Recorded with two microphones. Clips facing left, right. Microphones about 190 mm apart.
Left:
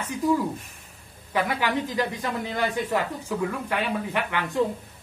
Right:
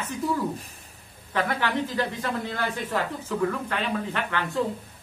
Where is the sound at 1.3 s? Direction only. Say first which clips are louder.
Left 1 dB; 10° left (ahead or behind).